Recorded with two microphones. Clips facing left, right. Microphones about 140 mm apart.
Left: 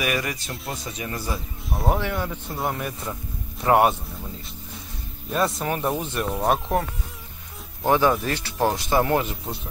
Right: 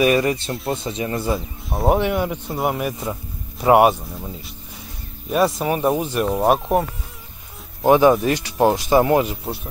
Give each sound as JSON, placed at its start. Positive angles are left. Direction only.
{"t": 0.0, "sound": "speech", "side_deg": -30}
{"t": 5.3, "sound": "speech", "side_deg": -10}
{"t": 6.2, "sound": "speech", "side_deg": -30}
{"t": 7.8, "sound": "speech", "side_deg": -20}